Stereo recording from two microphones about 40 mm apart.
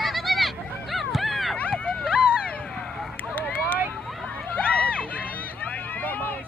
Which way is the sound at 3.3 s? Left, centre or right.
Left.